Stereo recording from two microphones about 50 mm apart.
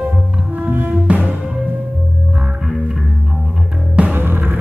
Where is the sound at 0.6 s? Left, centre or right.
Right.